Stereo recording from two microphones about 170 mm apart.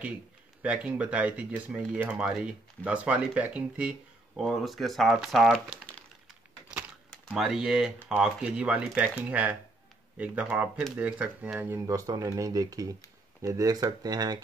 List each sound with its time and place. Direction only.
0.0 s speech: 10° right (ahead or behind)
7.1 s speech: centre (ahead or behind); by 14.4 s 25° right (ahead or behind)